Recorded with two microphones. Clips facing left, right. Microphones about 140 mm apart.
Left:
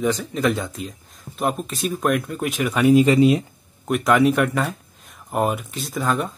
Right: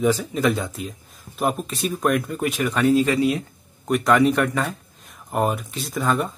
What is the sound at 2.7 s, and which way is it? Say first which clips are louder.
Speech: left 5 dB; 15° left (ahead or behind).